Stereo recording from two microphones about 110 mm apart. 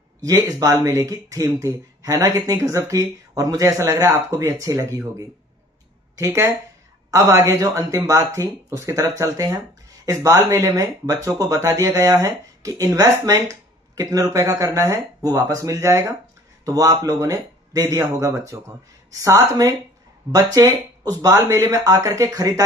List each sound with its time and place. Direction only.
0.2 s speech: 30° right (ahead or behind)